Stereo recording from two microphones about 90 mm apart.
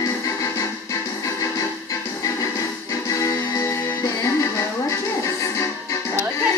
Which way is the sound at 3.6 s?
35° left (ahead or behind).